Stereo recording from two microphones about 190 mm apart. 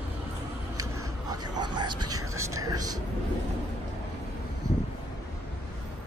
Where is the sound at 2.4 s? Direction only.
15° right (ahead or behind).